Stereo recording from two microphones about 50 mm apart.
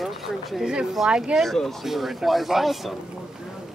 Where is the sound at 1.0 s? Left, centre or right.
Centre.